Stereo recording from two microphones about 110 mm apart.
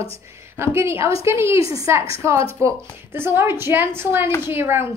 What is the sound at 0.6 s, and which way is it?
A woman's voice, 25° right (ahead or behind).